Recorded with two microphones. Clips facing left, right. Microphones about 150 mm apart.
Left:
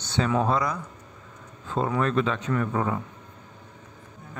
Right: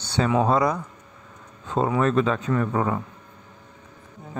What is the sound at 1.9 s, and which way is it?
A man's voice, 40° right (ahead or behind).